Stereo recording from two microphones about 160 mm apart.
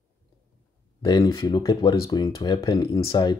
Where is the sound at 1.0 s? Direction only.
25° left (ahead or behind).